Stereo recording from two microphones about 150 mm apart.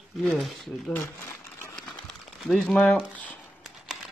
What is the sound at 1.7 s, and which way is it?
Crumpling, 5° left (ahead or behind).